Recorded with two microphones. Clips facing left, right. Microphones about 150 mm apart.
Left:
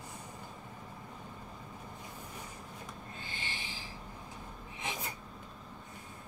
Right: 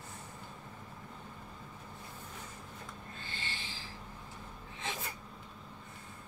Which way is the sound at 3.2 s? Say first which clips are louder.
Even; 15° left (ahead or behind).